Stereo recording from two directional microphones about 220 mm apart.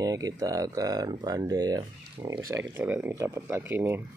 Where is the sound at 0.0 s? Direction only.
15° right (ahead or behind).